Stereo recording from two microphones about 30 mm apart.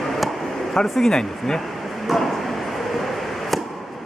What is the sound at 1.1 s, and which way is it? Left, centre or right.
Speech, centre.